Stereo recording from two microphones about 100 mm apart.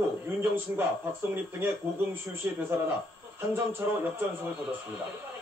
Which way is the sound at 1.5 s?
20° right (ahead or behind).